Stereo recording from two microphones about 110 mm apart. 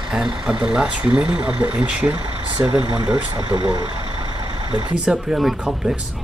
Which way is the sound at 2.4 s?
50° right (ahead or behind).